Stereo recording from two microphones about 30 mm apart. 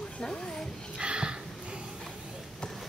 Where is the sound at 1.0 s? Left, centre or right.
Right.